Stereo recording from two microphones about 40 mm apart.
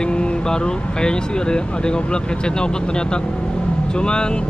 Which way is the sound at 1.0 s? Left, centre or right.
Left.